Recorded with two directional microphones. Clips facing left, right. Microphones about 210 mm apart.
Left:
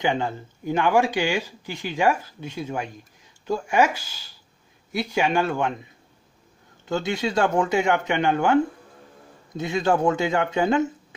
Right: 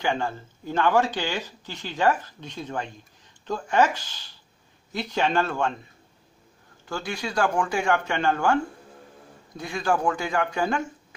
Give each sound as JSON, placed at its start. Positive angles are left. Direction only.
{"t": 0.0, "sound": "speech", "side_deg": 20}
{"t": 6.9, "sound": "speech", "side_deg": 20}